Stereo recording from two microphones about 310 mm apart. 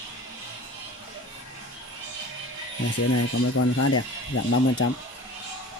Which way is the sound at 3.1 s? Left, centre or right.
Left.